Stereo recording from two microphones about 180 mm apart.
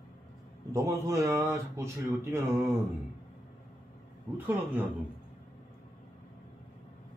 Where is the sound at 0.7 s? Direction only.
15° right (ahead or behind).